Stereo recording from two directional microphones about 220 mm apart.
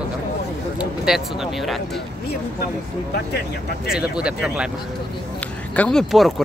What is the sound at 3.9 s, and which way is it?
Speech, 5° right (ahead or behind).